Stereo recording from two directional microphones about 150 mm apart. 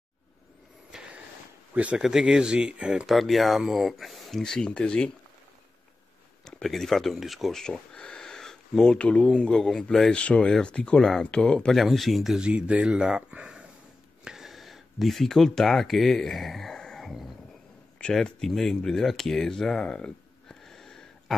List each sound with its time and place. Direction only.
0.9 s a sound: 5° right (ahead or behind)
1.7 s speech: 10° right (ahead or behind); by 5.1 s 5° left (ahead or behind)
6.4 s speech: centre (ahead or behind)